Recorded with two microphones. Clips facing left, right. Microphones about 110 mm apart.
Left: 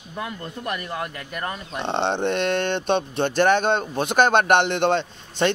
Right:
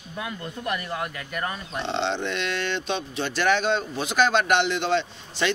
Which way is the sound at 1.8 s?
55° left (ahead or behind).